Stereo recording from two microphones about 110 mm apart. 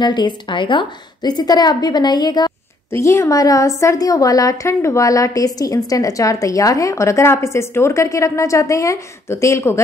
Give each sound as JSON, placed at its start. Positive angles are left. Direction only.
{"t": 0.0, "sound": "a woman's voice", "side_deg": 40}
{"t": 2.9, "sound": "a woman's voice", "side_deg": 25}